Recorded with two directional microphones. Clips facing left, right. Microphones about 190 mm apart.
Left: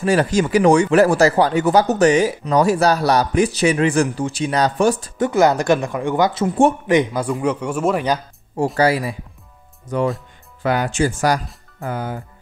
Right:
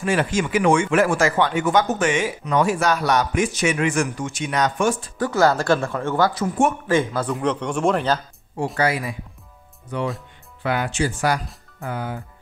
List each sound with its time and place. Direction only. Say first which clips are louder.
0.0 s speech: left 5 dB; 40° left (ahead or behind)
5.2 s speech: left 3 dB; 20° left (ahead or behind)
8.7 s speech: left 4 dB; 35° left (ahead or behind)